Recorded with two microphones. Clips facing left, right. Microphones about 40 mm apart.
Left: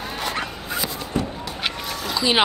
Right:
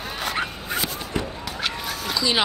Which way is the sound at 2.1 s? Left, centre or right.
Left.